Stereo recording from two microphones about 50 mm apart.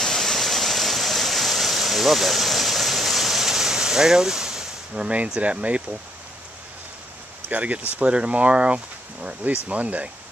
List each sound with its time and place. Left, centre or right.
0.0 s waterfall: centre
4.9 s speech: right
7.4 s speech: right